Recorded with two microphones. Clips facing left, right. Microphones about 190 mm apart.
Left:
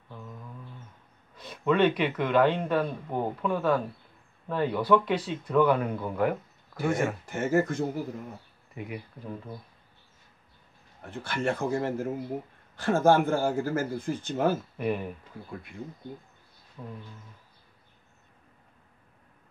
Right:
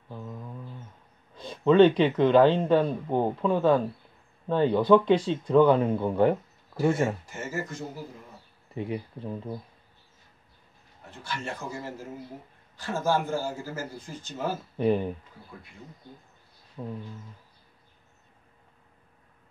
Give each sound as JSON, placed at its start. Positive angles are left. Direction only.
{"t": 0.1, "sound": "a sound", "side_deg": -25}
{"t": 1.3, "sound": "speech", "side_deg": -25}
{"t": 7.2, "sound": "speech", "side_deg": 55}
{"t": 8.7, "sound": "speech", "side_deg": -30}
{"t": 11.1, "sound": "speech", "side_deg": 55}
{"t": 14.8, "sound": "speech", "side_deg": -30}
{"t": 16.8, "sound": "speech", "side_deg": -25}